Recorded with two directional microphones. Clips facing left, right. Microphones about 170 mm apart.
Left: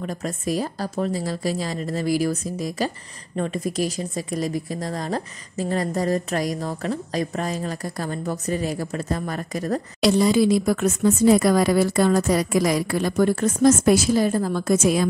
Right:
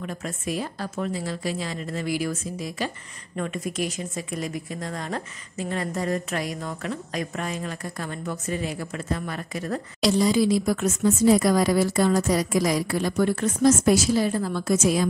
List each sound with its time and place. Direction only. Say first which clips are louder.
0.0 s speech: left 4 dB; 35° left (ahead or behind)
10.0 s speech: left 3 dB; 60° left (ahead or behind)